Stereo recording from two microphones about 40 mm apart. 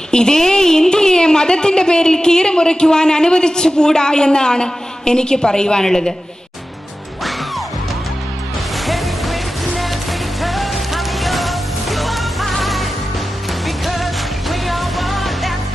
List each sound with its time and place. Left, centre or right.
0.1 s a woman's voice: centre
8.8 s music: centre
10.4 s music: centre